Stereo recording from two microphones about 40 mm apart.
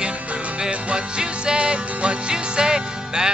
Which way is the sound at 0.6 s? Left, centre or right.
Right.